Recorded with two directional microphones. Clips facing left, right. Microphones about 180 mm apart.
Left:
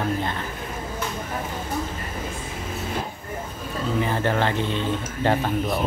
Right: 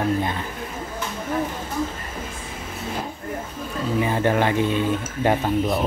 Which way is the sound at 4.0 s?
15° right (ahead or behind).